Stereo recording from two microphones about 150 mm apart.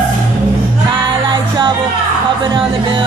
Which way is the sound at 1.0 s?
35° right (ahead or behind).